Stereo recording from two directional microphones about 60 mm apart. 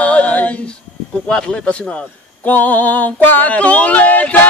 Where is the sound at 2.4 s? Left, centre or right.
Left.